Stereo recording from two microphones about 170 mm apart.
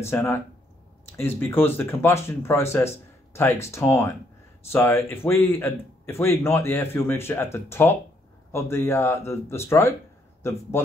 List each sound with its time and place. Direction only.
0.0 s speech: 15° left (ahead or behind)